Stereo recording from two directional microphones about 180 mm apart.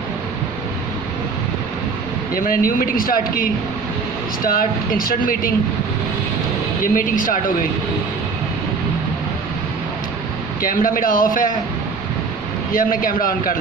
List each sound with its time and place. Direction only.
2.3 s speech: 50° left (ahead or behind)
6.8 s speech: 50° left (ahead or behind)
10.6 s speech: 50° left (ahead or behind)
12.7 s speech: 50° left (ahead or behind)